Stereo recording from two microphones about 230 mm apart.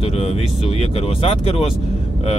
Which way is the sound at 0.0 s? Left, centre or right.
Left.